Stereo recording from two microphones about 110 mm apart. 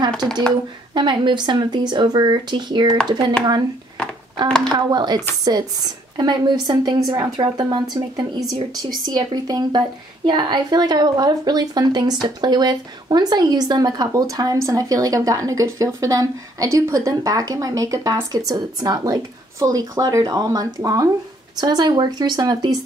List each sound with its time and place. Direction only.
0.9 s speech: 45° right (ahead or behind)
4.7 s speech: 40° right (ahead or behind)